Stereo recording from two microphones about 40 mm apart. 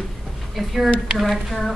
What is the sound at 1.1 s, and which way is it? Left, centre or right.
Speech, centre.